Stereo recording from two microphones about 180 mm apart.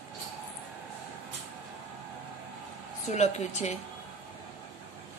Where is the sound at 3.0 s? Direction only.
40° left (ahead or behind).